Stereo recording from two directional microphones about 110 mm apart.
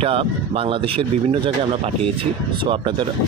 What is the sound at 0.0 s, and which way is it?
Speech, 55° right (ahead or behind).